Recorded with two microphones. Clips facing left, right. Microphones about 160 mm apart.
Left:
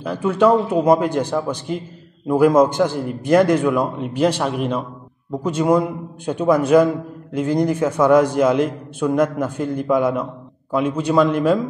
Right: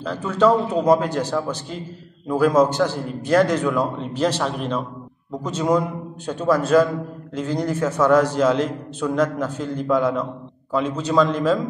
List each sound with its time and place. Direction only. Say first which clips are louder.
0.0 s a man's voice: left 2 dB; 10° left (ahead or behind)